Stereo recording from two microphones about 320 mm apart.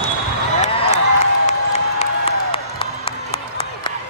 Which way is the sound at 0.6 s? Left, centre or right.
Left.